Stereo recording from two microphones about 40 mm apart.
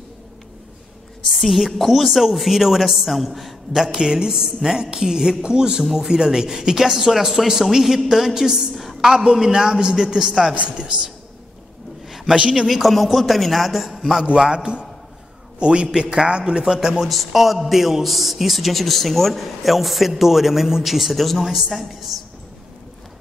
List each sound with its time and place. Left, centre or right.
1.4 s a man's voice: centre
3.9 s a man's voice: centre
10.5 s speech: right
12.4 s a man's voice: right
12.6 s a man's voice: centre
14.5 s a man's voice: right; by 22.2 s centre